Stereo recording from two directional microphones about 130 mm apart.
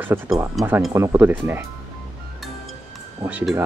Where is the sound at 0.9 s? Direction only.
20° right (ahead or behind).